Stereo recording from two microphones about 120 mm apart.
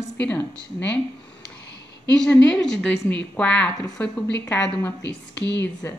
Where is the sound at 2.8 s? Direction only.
25° left (ahead or behind).